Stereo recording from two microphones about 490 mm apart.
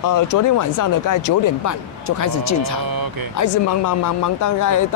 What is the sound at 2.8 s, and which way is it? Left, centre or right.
Speech, right.